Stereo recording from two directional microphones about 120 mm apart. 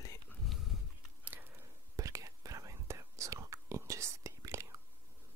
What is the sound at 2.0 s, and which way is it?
Whispering, 30° right (ahead or behind).